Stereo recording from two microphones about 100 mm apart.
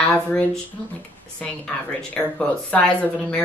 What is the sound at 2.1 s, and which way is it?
A woman's voice, 10° left (ahead or behind).